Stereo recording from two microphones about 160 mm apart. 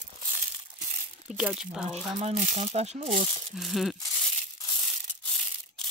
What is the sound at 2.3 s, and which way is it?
Speech, 45° right (ahead or behind).